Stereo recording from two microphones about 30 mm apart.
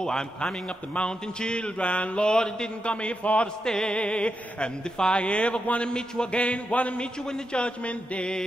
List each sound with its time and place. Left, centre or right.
0.0 s a man's voice: left
2.2 s mantra: left
2.8 s a man's voice: left
3.6 s mantra: left
3.9 s a man's voice: left
6.3 s music: left
7.5 s a man's voice: left